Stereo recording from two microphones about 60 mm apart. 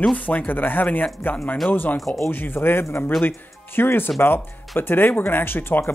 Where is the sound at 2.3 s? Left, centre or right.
Left.